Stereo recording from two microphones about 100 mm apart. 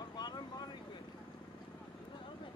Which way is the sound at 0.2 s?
45° left (ahead or behind).